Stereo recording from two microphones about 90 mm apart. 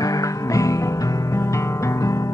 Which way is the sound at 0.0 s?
35° left (ahead or behind).